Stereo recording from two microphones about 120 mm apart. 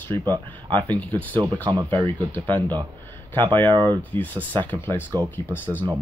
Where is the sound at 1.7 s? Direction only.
45° right (ahead or behind).